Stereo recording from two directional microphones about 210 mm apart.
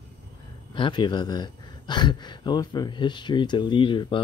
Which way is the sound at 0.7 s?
20° left (ahead or behind).